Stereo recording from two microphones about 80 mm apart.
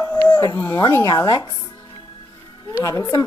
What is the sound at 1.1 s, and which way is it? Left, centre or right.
Speech, left.